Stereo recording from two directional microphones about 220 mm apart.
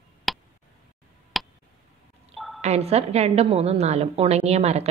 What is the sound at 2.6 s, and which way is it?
A woman's voice, 30° right (ahead or behind).